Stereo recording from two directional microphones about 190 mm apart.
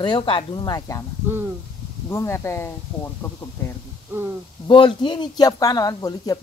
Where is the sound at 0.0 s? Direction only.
25° left (ahead or behind).